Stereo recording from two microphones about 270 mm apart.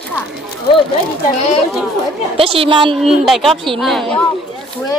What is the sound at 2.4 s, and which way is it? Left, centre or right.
Speech, right.